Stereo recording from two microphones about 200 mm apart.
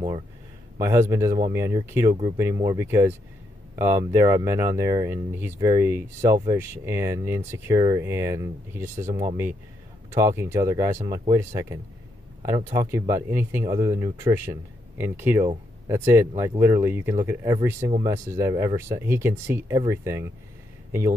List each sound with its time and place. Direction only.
0.7 s speech: 15° right (ahead or behind)
10.1 s speech: 15° right (ahead or behind)
18.5 s speech: 25° right (ahead or behind)
18.8 s speech: 15° right (ahead or behind)